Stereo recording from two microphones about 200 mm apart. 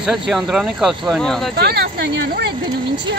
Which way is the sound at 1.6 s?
55° right (ahead or behind).